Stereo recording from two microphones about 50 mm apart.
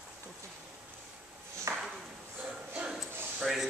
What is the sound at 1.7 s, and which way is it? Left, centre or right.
Ping, right.